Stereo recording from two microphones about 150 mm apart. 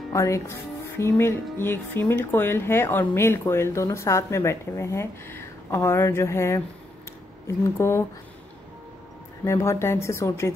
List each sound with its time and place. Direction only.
0.1 s speech: 20° left (ahead or behind)
9.4 s speech: 20° left (ahead or behind)